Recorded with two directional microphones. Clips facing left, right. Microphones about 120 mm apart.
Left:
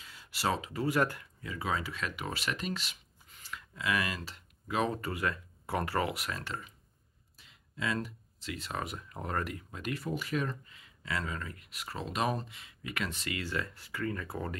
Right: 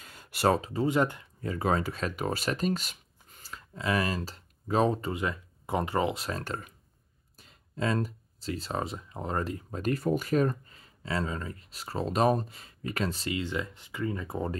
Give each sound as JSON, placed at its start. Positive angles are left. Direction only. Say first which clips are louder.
{"t": 0.0, "sound": "a sound", "louder": "right 7 dB", "side_deg": -50}
{"t": 0.6, "sound": "speech", "louder": "right 5 dB", "side_deg": -35}
{"t": 0.8, "sound": "speech", "louder": "right 3 dB", "side_deg": -25}
{"t": 1.4, "sound": "speech", "louder": "right 7 dB", "side_deg": -45}
{"t": 6.4, "sound": "speech", "louder": "right 4 dB", "side_deg": -45}